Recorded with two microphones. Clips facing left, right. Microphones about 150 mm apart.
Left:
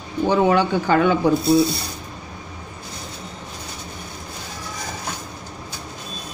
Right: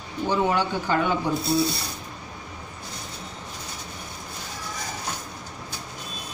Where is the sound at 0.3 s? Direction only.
85° left.